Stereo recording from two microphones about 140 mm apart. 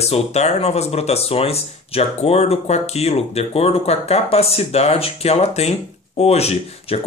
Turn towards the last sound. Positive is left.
turn(degrees=45)  # may be behind; listen again after turning